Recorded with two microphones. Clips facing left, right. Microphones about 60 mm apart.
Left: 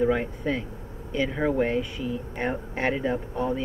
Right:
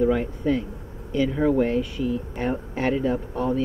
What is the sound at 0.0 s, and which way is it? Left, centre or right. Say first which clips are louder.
Speech: right 2 dB; left.